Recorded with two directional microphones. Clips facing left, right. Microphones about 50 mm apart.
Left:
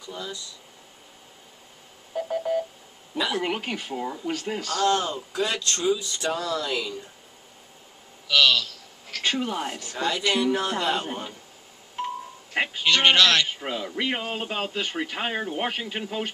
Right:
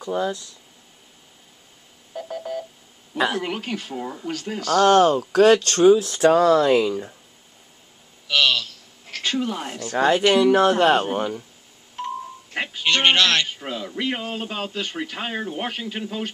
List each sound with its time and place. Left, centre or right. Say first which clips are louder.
0.0 s speech: right 11 dB; right
2.1 s a sound: left 4 dB; centre
3.3 s speech: right 1 dB; centre
4.6 s speech: right 9 dB; right
6.2 s speech: right 12 dB; right
8.5 s a sound: even; right
9.2 s speech: right 1 dB; centre
9.9 s speech: right 9 dB; right
10.2 s speech: right 7 dB; right
12.0 s music: right 1 dB; centre
12.5 s telephone: left 2 dB; centre
12.8 s speech: right 1 dB; right
13.5 s speech: even; centre